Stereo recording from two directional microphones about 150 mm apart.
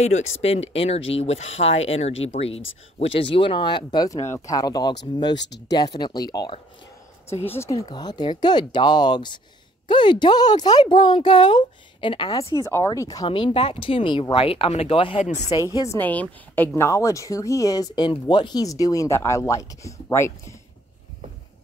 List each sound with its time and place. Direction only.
0.0 s speech: 45° left (ahead or behind); by 6.6 s 25° left (ahead or behind)
7.9 s speech: 30° left (ahead or behind)
13.3 s speech: 35° left (ahead or behind)
15.7 s speech: 20° left (ahead or behind)
16.0 s speech: 10° left (ahead or behind)